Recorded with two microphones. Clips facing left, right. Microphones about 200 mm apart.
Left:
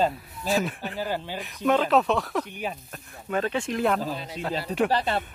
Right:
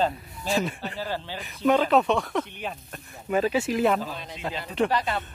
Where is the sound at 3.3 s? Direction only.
5° right (ahead or behind).